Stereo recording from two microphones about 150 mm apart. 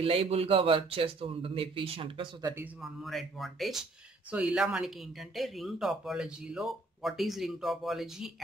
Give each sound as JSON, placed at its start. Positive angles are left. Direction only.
{"t": 0.0, "sound": "speech", "side_deg": -40}
{"t": 2.4, "sound": "a man's voice", "side_deg": -15}
{"t": 2.8, "sound": "speech", "side_deg": 0}